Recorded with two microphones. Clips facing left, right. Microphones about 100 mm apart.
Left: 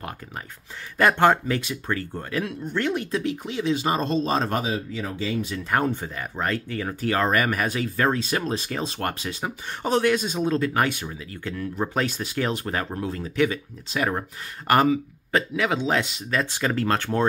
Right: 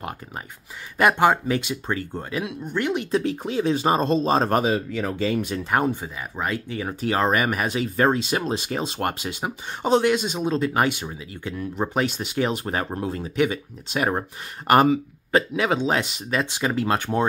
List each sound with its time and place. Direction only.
0.9 s speech: 15° right (ahead or behind)
3.1 s speech: 35° right (ahead or behind)
4.6 s speech: 60° right (ahead or behind)
5.6 s speech: 15° right (ahead or behind)
5.9 s speech: 5° right (ahead or behind)
6.7 s speech: 15° right (ahead or behind)